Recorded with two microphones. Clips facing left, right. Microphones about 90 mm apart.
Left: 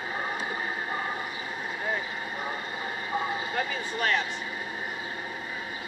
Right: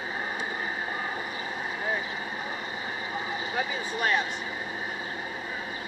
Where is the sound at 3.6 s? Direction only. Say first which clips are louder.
Right 2 dB; 15° right (ahead or behind).